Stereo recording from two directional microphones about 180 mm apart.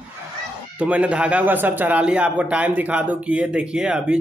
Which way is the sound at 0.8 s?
5° right (ahead or behind).